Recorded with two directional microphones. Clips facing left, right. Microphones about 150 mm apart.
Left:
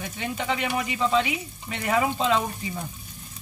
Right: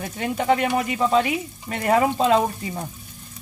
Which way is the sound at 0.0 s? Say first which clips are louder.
Right 6 dB; 45° right (ahead or behind).